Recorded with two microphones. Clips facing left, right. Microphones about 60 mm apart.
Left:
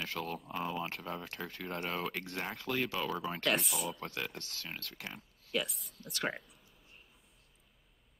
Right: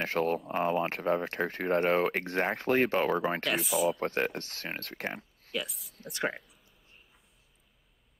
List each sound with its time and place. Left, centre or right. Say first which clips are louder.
0.0 s speech: right 10 dB; right
3.4 s speech: right 2 dB; centre
3.9 s speech: right 10 dB; right
5.5 s speech: even; centre
5.9 s speech: right 4 dB; right
6.2 s a sound: right 4 dB; centre